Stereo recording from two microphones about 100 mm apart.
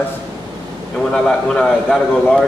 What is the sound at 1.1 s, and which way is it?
Speech, 10° left (ahead or behind).